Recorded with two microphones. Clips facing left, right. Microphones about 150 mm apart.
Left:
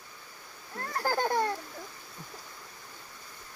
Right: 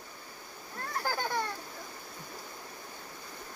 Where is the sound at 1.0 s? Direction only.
40° left (ahead or behind).